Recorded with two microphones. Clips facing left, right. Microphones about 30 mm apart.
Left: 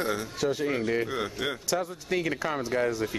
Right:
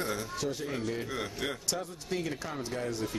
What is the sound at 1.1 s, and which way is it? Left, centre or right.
Neigh, centre.